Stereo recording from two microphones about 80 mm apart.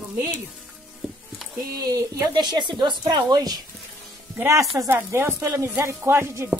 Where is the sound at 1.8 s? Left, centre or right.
Right.